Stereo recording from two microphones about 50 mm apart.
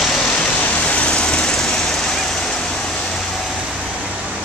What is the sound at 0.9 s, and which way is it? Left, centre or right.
Vehicle, left.